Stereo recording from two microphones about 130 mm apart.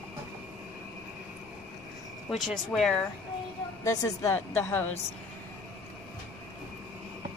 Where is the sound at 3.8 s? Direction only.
25° left (ahead or behind).